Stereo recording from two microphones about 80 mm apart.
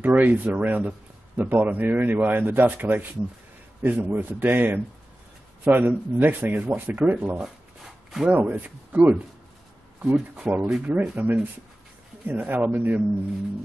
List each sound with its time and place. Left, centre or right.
0.0 s speech: right
7.3 s shuffling cards: centre
8.3 s speech: right